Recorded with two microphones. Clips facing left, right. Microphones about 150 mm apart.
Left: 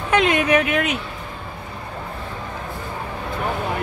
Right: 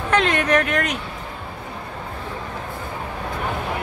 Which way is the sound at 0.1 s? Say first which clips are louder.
Left 2 dB; 5° left (ahead or behind).